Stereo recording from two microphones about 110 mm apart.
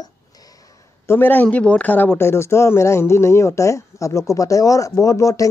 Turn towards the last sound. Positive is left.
turn(degrees=30)  # may be behind; listen again after turning